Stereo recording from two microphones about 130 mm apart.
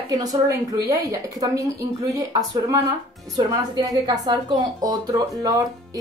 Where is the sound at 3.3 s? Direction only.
30° right (ahead or behind).